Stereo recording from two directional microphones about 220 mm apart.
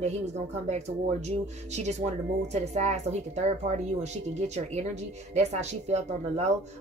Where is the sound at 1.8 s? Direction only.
30° right (ahead or behind).